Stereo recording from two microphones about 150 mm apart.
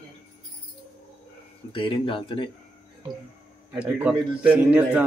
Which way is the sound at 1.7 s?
35° left (ahead or behind).